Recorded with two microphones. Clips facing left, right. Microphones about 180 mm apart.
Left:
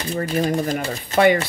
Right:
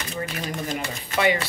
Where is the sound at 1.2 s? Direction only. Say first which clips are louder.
Left 7 dB; 50° left (ahead or behind).